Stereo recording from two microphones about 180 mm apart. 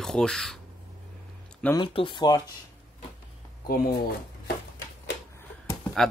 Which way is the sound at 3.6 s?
55° left (ahead or behind).